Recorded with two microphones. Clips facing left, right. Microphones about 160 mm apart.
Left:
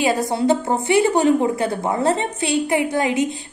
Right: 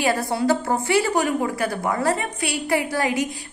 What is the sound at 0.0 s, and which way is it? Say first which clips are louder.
A woman's voice: left 3 dB; 20° left (ahead or behind).